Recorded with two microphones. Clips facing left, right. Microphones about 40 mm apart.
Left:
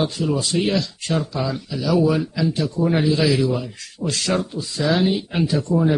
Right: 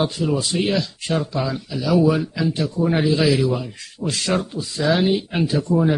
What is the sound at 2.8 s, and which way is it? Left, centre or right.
Speech, centre.